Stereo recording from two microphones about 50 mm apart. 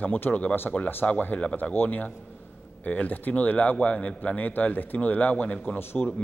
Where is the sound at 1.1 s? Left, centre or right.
Left.